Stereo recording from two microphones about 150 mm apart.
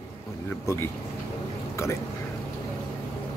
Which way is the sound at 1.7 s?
20° left (ahead or behind).